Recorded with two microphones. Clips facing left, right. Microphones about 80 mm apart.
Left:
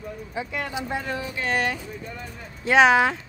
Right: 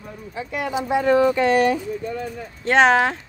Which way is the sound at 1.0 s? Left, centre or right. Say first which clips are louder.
Right 14 dB; right.